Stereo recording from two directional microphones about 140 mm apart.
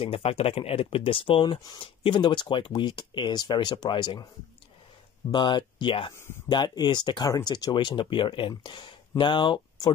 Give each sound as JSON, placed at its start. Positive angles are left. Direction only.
{"t": 0.0, "sound": "speech", "side_deg": 40}
{"t": 5.3, "sound": "speech", "side_deg": 35}
{"t": 6.1, "sound": "speech", "side_deg": 15}
{"t": 6.5, "sound": "speech", "side_deg": 30}